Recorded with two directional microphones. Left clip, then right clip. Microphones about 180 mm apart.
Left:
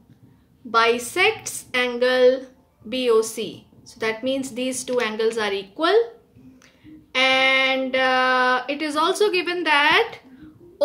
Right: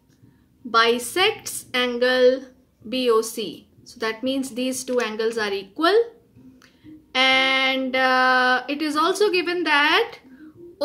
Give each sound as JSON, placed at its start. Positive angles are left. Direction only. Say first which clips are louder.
{"t": 0.7, "sound": "a woman's voice", "louder": "even", "side_deg": -20}
{"t": 7.1, "sound": "speech", "louder": "even", "side_deg": -20}